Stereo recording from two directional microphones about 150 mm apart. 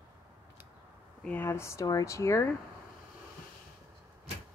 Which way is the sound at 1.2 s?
15° left (ahead or behind).